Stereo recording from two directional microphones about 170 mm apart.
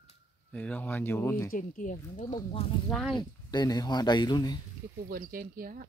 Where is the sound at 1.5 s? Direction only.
50° left (ahead or behind).